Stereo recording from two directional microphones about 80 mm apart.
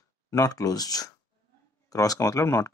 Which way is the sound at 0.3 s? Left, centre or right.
Left.